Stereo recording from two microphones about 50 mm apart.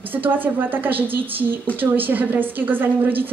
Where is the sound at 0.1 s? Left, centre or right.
Right.